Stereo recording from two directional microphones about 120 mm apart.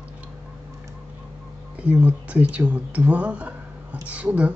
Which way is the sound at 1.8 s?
10° right (ahead or behind).